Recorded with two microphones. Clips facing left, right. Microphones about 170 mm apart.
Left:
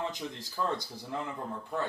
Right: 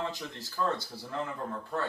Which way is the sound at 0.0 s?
15° left (ahead or behind).